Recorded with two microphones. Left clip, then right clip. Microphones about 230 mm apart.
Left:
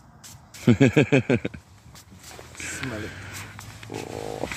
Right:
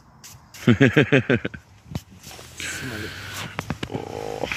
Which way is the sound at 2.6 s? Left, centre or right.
Centre.